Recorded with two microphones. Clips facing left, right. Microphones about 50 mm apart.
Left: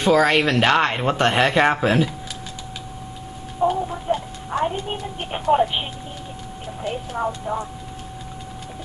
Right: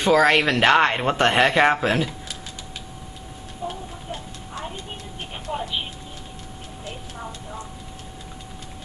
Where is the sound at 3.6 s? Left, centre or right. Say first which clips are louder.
Left 12 dB; left.